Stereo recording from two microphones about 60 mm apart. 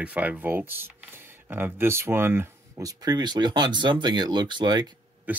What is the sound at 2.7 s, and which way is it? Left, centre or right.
Speech, right.